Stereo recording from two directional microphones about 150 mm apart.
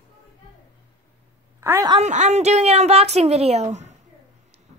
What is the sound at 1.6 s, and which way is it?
Speech, 15° right (ahead or behind).